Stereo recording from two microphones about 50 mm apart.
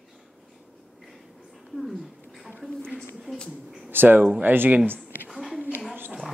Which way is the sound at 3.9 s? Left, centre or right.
Right.